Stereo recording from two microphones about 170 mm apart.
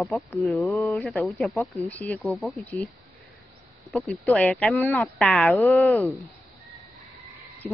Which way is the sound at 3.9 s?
Centre (ahead or behind).